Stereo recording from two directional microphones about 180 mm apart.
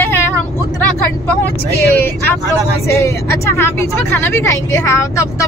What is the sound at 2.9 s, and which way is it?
Speech, 15° left (ahead or behind).